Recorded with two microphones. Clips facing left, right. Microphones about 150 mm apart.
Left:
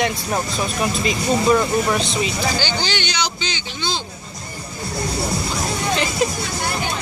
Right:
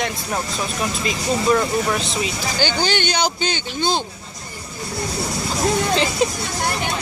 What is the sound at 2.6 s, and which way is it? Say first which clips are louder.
Speech: right 3 dB; 50° right (ahead or behind).